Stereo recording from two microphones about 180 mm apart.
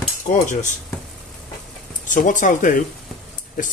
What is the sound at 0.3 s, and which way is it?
Speech, 45° left (ahead or behind).